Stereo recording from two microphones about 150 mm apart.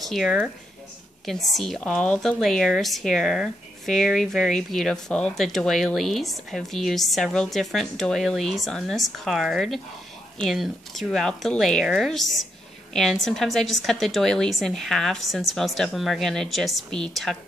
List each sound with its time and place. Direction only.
0.0 s a woman's voice: centre (ahead or behind)